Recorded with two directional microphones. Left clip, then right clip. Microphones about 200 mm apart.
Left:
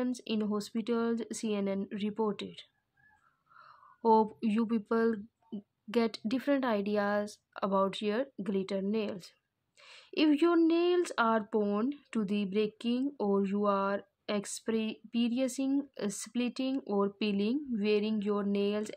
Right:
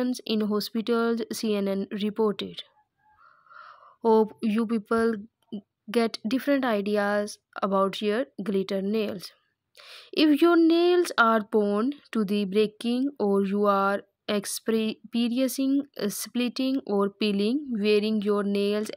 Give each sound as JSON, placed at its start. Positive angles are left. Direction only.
{"t": 0.0, "sound": "speech", "side_deg": -25}